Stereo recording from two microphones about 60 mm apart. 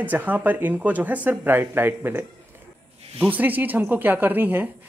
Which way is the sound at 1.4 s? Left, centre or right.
Right.